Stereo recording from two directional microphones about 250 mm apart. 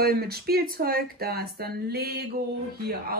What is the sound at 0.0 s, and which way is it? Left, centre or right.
Speech, right.